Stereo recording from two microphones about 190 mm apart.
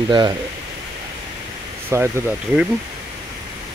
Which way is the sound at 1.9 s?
15° right (ahead or behind).